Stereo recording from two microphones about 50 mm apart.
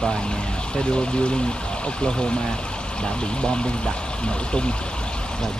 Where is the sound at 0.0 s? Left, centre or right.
Centre.